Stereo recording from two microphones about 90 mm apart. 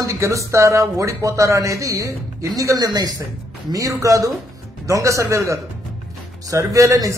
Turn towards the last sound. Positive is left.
turn(degrees=-35)  # may be behind; listen again after turning